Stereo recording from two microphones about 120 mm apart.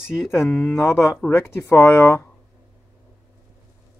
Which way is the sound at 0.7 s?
20° left (ahead or behind).